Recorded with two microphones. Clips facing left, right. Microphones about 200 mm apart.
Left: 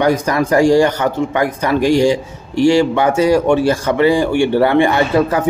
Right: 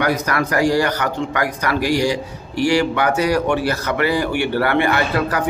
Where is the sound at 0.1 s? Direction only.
30° left (ahead or behind).